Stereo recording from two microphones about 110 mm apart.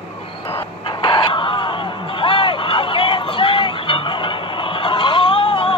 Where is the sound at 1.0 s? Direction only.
50° left (ahead or behind).